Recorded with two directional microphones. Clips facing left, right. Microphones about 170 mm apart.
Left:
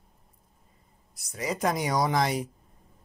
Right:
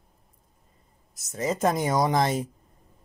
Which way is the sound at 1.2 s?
25° right (ahead or behind).